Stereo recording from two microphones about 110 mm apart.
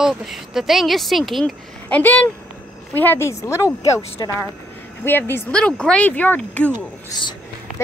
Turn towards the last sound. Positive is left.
turn(degrees=35)  # may be behind; listen again after turning